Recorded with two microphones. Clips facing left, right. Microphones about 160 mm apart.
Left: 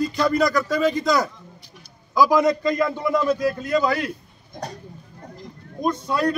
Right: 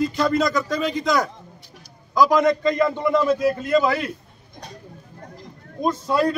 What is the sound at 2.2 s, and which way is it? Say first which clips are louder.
A man's voice: even; 5° left (ahead or behind).